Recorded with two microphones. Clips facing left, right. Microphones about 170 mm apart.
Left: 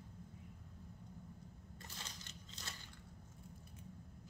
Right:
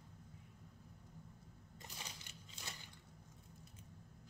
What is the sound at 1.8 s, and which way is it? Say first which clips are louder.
Crushing: right 1 dB; 15° right (ahead or behind).